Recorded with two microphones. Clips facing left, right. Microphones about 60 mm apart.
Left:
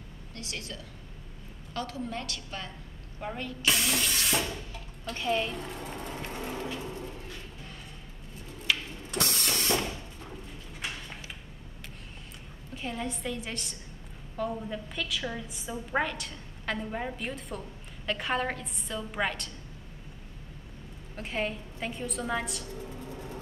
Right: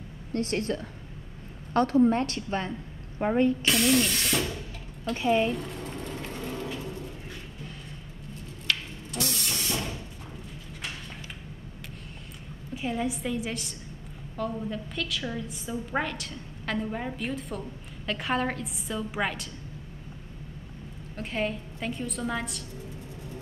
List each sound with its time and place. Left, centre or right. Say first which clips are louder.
0.3 s a woman's voice: right 13 dB; right
3.6 s a woman's voice: right 5 dB; centre
5.1 s speech: right 5 dB; centre
5.5 s a sound: right 4 dB; centre
8.7 s a sound: even; centre
9.2 s vehicle: left 1 dB; left
12.7 s a woman's voice: right 5 dB; centre
21.2 s a woman's voice: right 2 dB; centre